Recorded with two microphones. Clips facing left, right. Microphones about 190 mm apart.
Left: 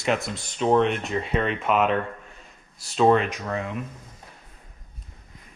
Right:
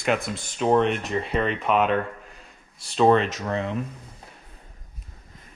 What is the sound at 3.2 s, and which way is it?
Speech, 30° right (ahead or behind).